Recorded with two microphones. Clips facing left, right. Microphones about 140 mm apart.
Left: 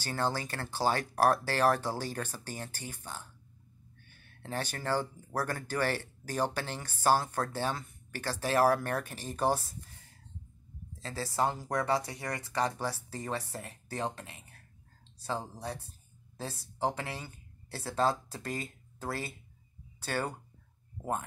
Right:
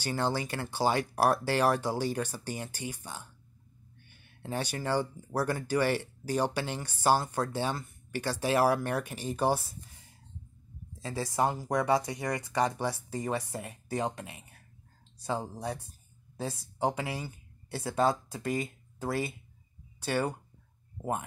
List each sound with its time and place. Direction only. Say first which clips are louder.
0.0 s speech: right 2 dB; 15° right (ahead or behind)
11.0 s speech: right 2 dB; 15° right (ahead or behind)